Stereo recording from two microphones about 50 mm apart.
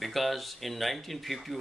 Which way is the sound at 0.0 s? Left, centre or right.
Centre.